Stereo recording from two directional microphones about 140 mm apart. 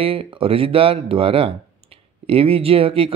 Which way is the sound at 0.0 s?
40° right (ahead or behind).